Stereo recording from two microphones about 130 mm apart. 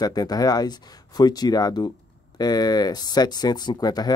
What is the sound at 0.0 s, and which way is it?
Speech, 30° left (ahead or behind).